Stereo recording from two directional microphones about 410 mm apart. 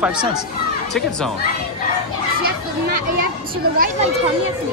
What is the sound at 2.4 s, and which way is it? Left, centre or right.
Children playing, right.